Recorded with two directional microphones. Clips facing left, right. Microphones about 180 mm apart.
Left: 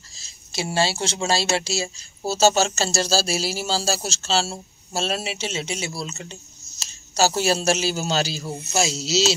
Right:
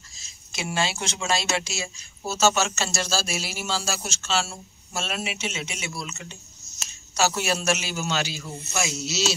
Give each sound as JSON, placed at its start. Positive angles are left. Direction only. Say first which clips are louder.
{"t": 0.1, "sound": "speech", "louder": "left 6 dB", "side_deg": 35}